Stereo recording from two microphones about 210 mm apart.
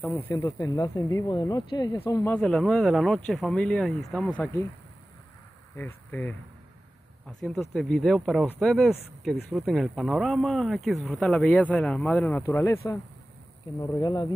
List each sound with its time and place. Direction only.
0.0 s speech: 10° left (ahead or behind)
5.8 s speech: 10° left (ahead or behind)
7.7 s speech: centre (ahead or behind); by 14.3 s 20° left (ahead or behind)